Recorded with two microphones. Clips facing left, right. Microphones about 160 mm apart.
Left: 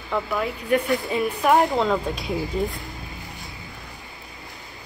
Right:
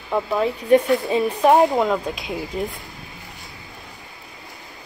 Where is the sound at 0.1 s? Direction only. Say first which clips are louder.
Right 4 dB; 25° right (ahead or behind).